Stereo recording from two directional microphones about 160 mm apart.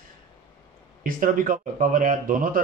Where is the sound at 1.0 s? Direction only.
55° right (ahead or behind).